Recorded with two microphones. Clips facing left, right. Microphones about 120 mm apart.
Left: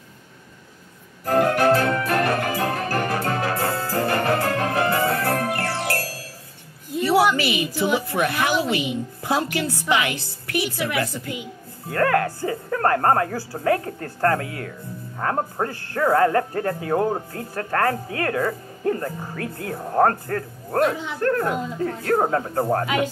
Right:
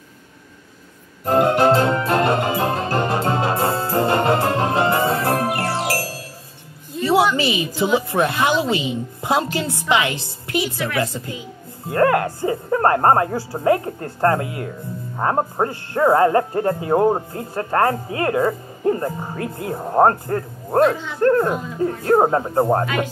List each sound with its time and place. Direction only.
1.2 s music: 25° right (ahead or behind)
7.3 s a woman's voice: 25° right (ahead or behind)